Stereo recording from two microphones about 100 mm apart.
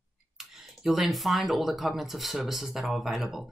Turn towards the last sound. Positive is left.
turn(degrees=0)  # may be behind; listen again after turning